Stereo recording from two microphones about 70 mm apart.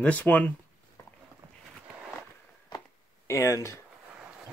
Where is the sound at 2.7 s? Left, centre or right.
Left.